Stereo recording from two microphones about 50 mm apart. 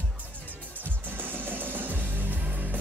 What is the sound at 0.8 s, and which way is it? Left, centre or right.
Music, right.